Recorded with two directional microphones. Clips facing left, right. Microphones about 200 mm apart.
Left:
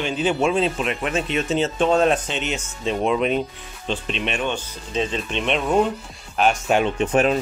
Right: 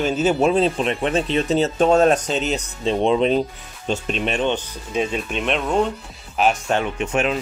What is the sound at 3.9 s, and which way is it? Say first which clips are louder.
Speech: right 3 dB; 45° right (ahead or behind).